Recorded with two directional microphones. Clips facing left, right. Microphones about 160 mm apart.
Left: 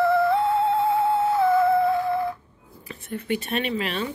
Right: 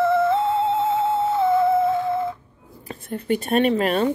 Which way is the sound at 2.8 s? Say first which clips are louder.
Right 4 dB; 45° right (ahead or behind).